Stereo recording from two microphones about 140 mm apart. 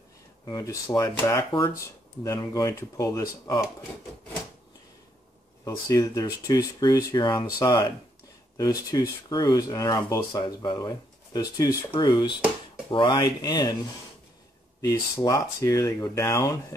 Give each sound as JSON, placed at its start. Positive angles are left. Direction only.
{"t": 0.5, "sound": "speech", "side_deg": 25}
{"t": 5.7, "sound": "speech", "side_deg": 25}
{"t": 15.1, "sound": "speech", "side_deg": 20}